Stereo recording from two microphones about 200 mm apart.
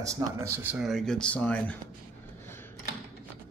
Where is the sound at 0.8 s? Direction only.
Centre (ahead or behind).